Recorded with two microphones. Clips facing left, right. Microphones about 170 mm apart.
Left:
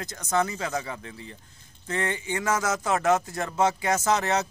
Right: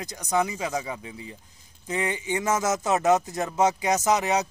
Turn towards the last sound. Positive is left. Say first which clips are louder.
# right 1 dB
turn(degrees=-15)  # may be behind; listen again after turning